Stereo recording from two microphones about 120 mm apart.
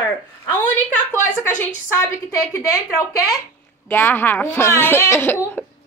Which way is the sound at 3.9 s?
20° left (ahead or behind).